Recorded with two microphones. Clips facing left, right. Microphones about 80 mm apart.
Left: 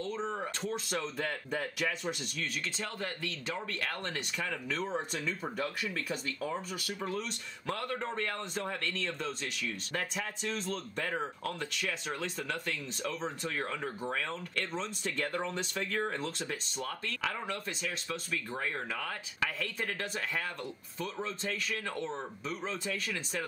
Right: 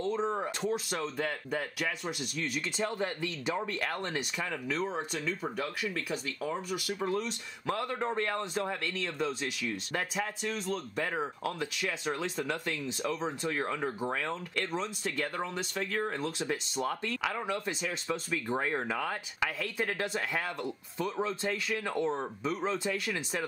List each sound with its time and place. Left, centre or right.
0.0 s speech: centre
2.8 s speech: centre